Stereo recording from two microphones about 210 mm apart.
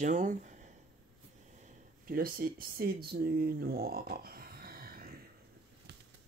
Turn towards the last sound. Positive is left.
turn(degrees=-45)  # may be behind; listen again after turning